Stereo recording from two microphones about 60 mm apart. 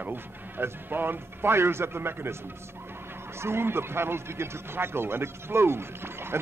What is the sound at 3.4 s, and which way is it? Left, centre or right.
A man's voice, right.